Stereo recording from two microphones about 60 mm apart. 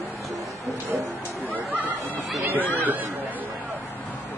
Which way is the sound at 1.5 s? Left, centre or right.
Right.